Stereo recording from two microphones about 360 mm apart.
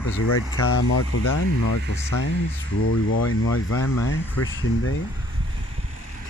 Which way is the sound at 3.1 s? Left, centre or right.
Left.